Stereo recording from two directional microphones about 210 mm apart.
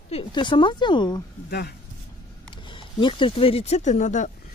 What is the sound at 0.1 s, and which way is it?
Speech, 20° left (ahead or behind).